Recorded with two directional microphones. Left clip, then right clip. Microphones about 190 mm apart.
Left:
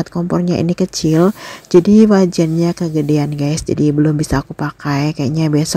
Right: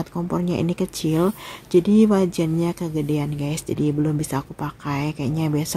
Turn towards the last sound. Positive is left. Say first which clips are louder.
# left 8 dB
turn(degrees=25)  # may be behind; listen again after turning